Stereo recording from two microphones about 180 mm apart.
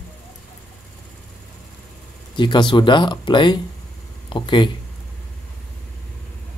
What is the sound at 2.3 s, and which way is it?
Speech, 25° left (ahead or behind).